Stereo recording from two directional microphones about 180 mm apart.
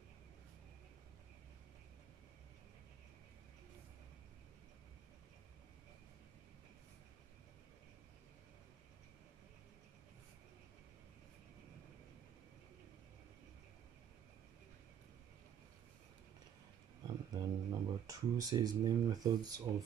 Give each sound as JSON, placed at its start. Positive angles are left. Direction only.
{"t": 17.3, "sound": "speech", "side_deg": -20}